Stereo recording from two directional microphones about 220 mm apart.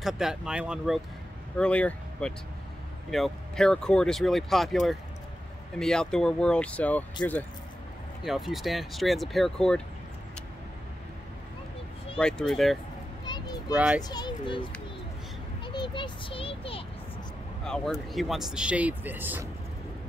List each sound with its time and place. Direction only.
0.0 s speech: centre (ahead or behind)
8.2 s speech: centre (ahead or behind)
12.2 s speech: 5° left (ahead or behind)
13.2 s children playing: 20° left (ahead or behind)
13.7 s speech: 5° right (ahead or behind)
14.0 s a child's voice: 20° left (ahead or behind)
17.6 s speech: 5° left (ahead or behind)